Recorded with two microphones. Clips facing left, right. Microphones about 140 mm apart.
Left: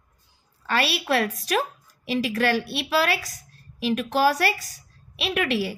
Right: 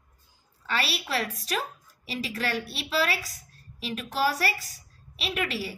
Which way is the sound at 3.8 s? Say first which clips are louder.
Left 7 dB; 75° left (ahead or behind).